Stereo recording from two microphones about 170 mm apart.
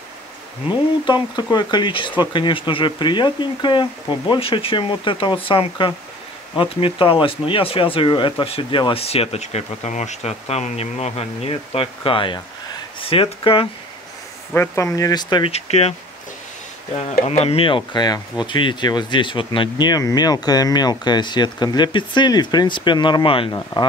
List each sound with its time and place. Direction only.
1.0 s speech: 25° left (ahead or behind)
14.5 s speech: 15° left (ahead or behind); by 15.9 s 35° left (ahead or behind)
17.3 s speech: 35° left (ahead or behind)